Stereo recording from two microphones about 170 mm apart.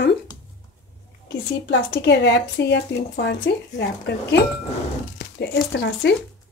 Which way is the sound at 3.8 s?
85° left.